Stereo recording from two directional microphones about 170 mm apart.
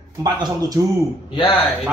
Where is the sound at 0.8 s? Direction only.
20° right (ahead or behind).